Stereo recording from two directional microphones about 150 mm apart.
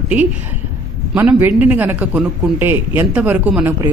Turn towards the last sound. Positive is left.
turn(degrees=-10)  # may be behind; listen again after turning